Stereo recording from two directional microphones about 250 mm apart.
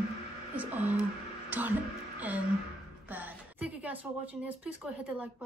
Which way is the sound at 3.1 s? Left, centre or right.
Centre.